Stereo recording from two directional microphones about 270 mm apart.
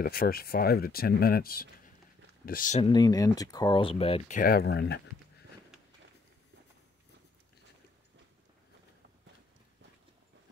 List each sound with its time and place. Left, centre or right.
0.0 s speech: left